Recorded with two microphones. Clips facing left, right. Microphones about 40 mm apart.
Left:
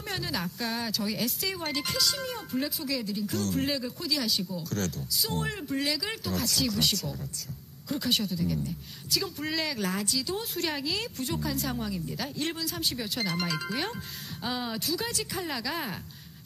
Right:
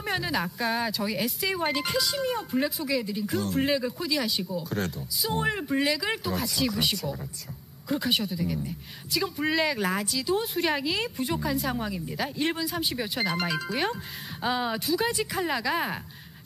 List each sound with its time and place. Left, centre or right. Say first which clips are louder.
0.0 s speech: right 5 dB; centre
10.0 s speech: right 5 dB; centre